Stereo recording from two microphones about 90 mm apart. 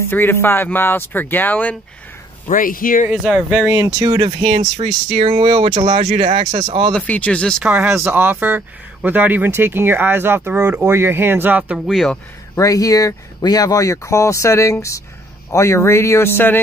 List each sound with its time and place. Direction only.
0.1 s speech: 25° left (ahead or behind)
3.1 s speech: 15° right (ahead or behind)
4.0 s speech: 60° right (ahead or behind); by 6.9 s 75° right (ahead or behind)
6.9 s speech: 15° left (ahead or behind)
7.6 s speech: 20° right (ahead or behind)
11.8 s speech: centre (ahead or behind)
12.5 s speech: 40° left (ahead or behind); by 16.6 s 25° left (ahead or behind)